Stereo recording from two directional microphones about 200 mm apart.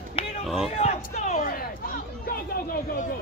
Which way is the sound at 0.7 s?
35° left (ahead or behind).